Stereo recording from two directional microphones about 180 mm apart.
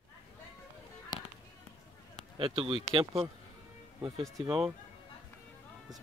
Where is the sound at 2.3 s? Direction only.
30° right (ahead or behind).